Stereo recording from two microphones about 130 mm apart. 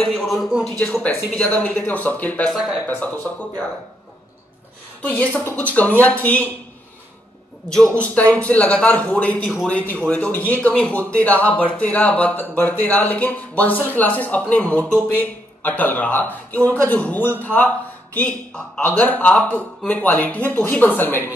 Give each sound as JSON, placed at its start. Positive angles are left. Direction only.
{"t": 0.0, "sound": "speech", "side_deg": 5}
{"t": 1.0, "sound": "speech", "side_deg": 10}
{"t": 5.0, "sound": "speech", "side_deg": 10}
{"t": 8.0, "sound": "a man's voice", "side_deg": 10}